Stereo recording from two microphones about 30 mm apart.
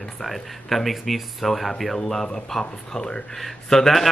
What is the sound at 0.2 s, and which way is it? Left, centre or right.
A man's voice, centre.